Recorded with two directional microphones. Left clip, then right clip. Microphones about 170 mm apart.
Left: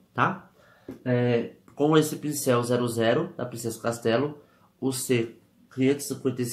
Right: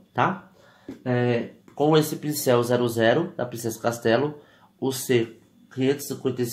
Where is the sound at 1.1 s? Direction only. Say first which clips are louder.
Even; 15° right (ahead or behind).